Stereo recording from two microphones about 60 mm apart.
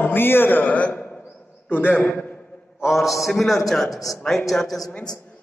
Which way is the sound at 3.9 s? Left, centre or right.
Left.